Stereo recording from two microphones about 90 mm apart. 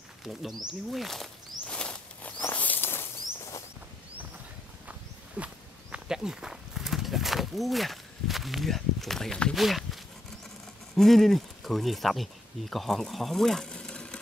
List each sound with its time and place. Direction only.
0.2 s speech: centre (ahead or behind)
0.7 s a sound: centre (ahead or behind)
2.4 s walk: 20° left (ahead or behind)
5.4 s walk: 10° right (ahead or behind)
11.0 s speech: centre (ahead or behind)